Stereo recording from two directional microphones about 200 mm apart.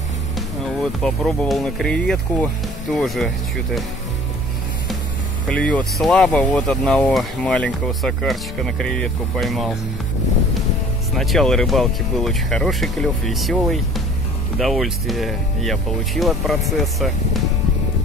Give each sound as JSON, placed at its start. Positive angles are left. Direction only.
{"t": 1.0, "sound": "speech", "side_deg": 5}
{"t": 5.5, "sound": "speech", "side_deg": 5}
{"t": 11.1, "sound": "speech", "side_deg": 0}